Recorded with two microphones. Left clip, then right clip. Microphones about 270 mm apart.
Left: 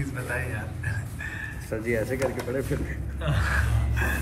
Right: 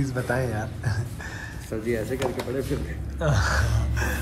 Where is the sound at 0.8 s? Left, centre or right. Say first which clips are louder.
Even; centre.